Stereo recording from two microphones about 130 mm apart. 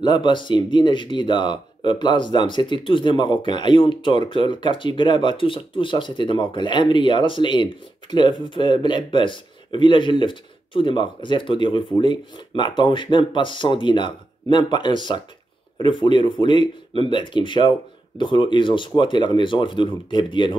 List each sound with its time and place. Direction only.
0.0 s speech: 35° left (ahead or behind)